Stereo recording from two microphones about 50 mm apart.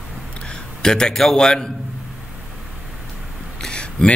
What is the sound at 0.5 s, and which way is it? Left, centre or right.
A man's voice, centre.